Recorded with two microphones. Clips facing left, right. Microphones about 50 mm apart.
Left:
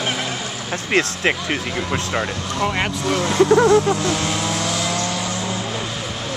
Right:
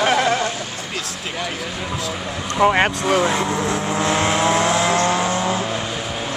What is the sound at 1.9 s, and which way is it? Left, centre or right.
Speech, left.